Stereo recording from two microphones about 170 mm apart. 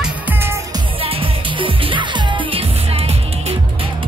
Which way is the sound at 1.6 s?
30° right (ahead or behind).